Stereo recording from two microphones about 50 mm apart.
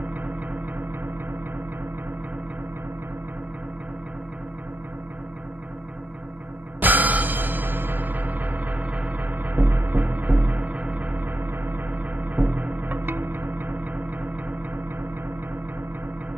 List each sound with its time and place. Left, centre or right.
6.8 s music: right